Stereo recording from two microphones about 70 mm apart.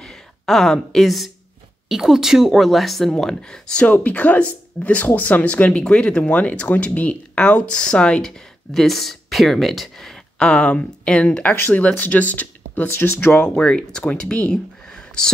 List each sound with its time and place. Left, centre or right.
0.0 s a woman's voice: centre